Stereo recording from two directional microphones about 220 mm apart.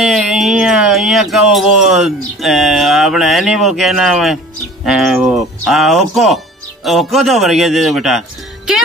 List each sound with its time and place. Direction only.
0.0 s speech: centre (ahead or behind)